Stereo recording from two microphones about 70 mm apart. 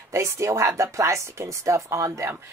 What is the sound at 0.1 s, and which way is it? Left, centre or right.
A woman's voice, right.